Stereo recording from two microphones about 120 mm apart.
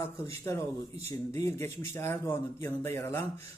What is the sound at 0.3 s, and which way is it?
Speech, 25° left (ahead or behind).